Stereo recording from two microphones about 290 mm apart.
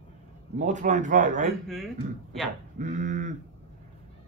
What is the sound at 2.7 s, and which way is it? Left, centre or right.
Speech, right.